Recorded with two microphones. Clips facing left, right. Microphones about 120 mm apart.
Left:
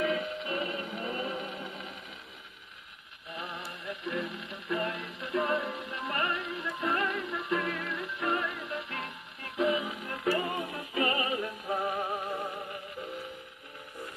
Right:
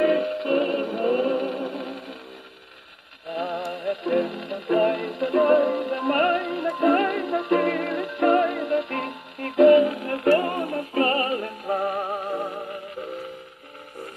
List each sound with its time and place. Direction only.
0.0 s music: 55° right (ahead or behind)
3.3 s music: 55° right (ahead or behind)